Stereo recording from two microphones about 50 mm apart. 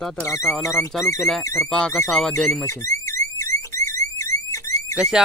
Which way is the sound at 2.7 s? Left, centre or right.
Left.